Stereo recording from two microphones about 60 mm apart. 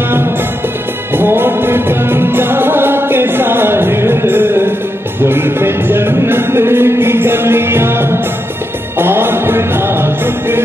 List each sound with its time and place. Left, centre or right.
1.1 s music: right